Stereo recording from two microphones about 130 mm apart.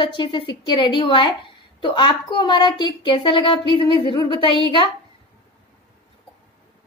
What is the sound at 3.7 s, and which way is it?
Speech, 45° right (ahead or behind).